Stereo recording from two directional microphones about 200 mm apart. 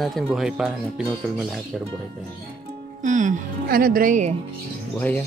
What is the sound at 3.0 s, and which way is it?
Music, 40° right (ahead or behind).